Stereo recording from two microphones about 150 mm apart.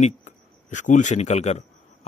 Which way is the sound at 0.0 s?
55° left (ahead or behind).